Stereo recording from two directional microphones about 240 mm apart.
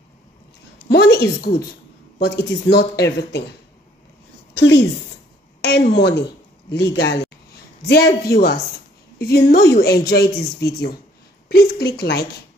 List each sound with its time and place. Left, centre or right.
0.8 s a sound: left
2.1 s speech: left
4.6 s a woman's voice: left